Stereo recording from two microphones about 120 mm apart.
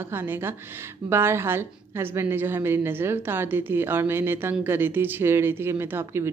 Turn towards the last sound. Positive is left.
turn(degrees=-20)  # may be behind; listen again after turning